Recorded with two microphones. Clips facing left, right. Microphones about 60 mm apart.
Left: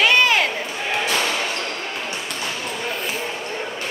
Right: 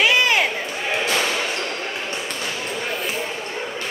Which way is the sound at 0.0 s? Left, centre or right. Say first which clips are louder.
Left 1 dB; centre.